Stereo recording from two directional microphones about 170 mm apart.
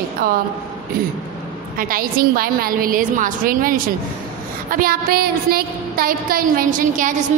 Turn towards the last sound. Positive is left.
turn(degrees=-50)  # may be behind; listen again after turning